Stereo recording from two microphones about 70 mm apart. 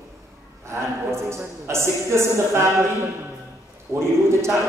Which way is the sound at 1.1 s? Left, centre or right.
Right.